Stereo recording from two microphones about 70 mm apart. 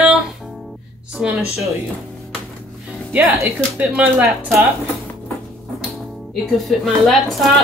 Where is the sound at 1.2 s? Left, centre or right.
Centre.